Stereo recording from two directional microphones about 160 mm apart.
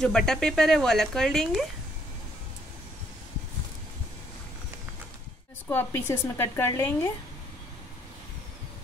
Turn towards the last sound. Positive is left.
turn(degrees=15)  # may be behind; listen again after turning